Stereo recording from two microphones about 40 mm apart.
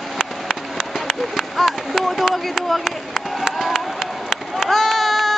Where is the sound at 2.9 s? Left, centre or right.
Centre.